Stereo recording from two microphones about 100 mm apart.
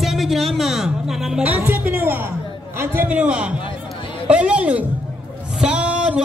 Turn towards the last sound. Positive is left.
turn(degrees=-10)  # may be behind; listen again after turning